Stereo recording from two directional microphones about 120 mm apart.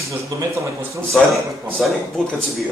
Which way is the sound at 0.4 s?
25° right (ahead or behind).